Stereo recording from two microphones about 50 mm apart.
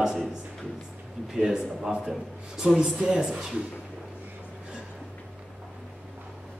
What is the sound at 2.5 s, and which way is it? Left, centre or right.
A man's voice, centre.